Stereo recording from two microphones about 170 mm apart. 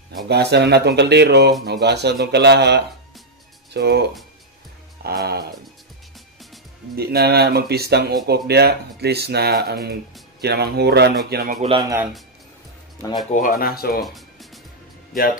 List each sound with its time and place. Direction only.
0.3 s speech: 80° right
5.0 s speech: 70° right (ahead or behind)
7.0 s speech: 65° right (ahead or behind)
11.2 s speech: 60° right (ahead or behind)
13.3 s speech: 55° left (ahead or behind)
14.0 s music: centre (ahead or behind)